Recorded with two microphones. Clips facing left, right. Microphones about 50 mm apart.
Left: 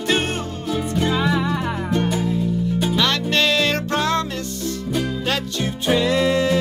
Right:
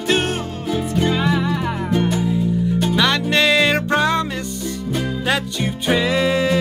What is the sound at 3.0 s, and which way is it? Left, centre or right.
Music, centre.